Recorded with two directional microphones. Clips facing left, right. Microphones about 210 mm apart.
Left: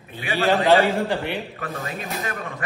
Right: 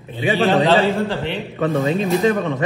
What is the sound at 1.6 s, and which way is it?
Speech, 25° right (ahead or behind).